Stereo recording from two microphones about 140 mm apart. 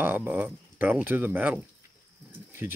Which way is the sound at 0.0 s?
15° right (ahead or behind).